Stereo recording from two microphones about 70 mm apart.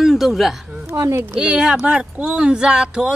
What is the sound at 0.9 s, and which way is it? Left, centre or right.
Speech, right.